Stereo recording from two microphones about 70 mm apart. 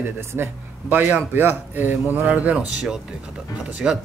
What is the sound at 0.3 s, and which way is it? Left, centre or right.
A man's voice, right.